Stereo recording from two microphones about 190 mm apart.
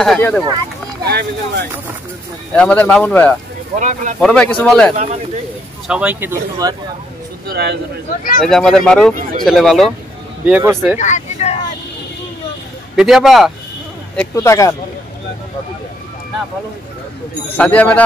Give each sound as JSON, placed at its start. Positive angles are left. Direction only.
{"t": 0.0, "sound": "speech", "side_deg": 5}
{"t": 1.0, "sound": "speech", "side_deg": -55}
{"t": 2.5, "sound": "speech", "side_deg": 5}
{"t": 3.7, "sound": "speech", "side_deg": -40}
{"t": 4.2, "sound": "speech", "side_deg": 5}
{"t": 4.9, "sound": "speech", "side_deg": -35}
{"t": 5.9, "sound": "speech", "side_deg": -5}
{"t": 7.4, "sound": "speech", "side_deg": -60}
{"t": 8.5, "sound": "speech", "side_deg": 0}
{"t": 10.4, "sound": "speech", "side_deg": -10}
{"t": 11.0, "sound": "vehicle", "side_deg": 40}
{"t": 12.9, "sound": "speech", "side_deg": -5}
{"t": 14.1, "sound": "speech", "side_deg": 15}
{"t": 17.6, "sound": "speech", "side_deg": 10}